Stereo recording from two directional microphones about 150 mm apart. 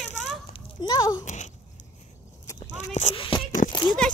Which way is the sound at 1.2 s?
55° left (ahead or behind).